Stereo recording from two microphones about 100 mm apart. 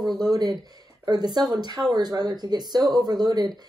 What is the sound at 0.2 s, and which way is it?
Speech, 40° right (ahead or behind).